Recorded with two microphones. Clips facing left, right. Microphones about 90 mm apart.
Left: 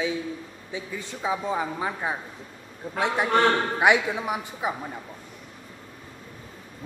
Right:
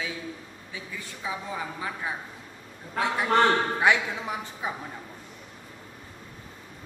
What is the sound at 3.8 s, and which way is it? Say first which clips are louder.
Speech: left 3 dB; 15° left (ahead or behind).